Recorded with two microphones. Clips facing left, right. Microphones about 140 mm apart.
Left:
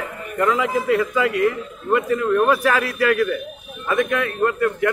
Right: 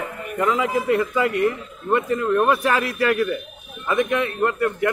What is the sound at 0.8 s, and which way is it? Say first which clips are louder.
A man's voice: left 1 dB; 25° right (ahead or behind).